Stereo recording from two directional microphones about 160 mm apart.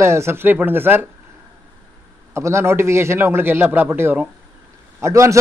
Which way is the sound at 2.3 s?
15° right (ahead or behind).